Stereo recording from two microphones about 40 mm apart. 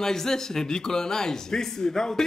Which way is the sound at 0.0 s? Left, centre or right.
Centre.